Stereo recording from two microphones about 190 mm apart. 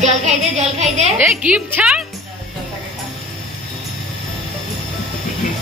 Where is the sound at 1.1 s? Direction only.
5° right (ahead or behind).